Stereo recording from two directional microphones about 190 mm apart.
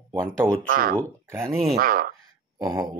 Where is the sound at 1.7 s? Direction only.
50° right (ahead or behind).